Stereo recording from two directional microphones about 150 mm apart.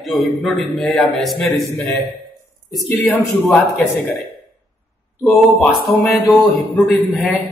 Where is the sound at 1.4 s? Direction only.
20° left (ahead or behind).